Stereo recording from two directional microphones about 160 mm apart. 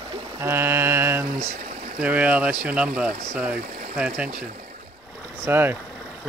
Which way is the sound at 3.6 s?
55° right (ahead or behind).